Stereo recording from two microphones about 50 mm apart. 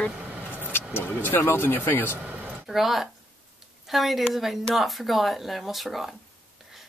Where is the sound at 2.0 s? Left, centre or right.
Right.